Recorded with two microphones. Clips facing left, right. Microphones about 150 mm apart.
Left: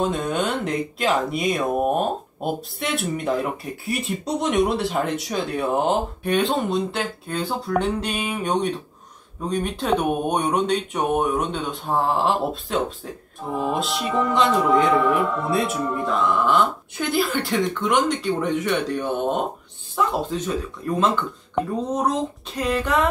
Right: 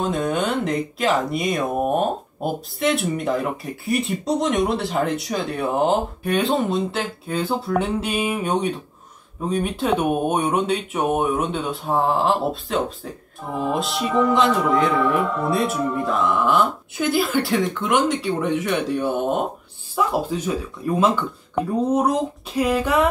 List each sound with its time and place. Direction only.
0.0 s speech: centre (ahead or behind)